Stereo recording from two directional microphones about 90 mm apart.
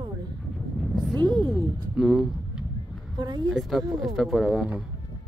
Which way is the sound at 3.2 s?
55° right (ahead or behind).